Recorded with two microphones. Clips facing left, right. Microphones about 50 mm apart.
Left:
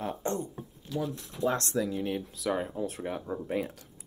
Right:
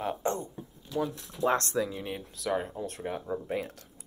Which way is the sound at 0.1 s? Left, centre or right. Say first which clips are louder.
Right 1 dB; right.